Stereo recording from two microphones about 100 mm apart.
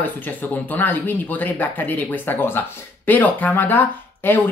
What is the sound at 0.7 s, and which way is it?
Speech, 20° left (ahead or behind).